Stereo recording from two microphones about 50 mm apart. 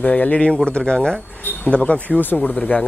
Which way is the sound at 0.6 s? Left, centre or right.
Centre.